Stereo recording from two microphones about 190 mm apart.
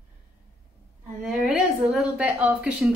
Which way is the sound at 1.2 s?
5° right (ahead or behind).